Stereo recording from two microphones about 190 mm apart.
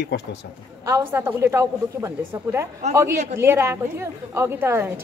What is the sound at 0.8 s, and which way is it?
A woman's voice, 15° right (ahead or behind).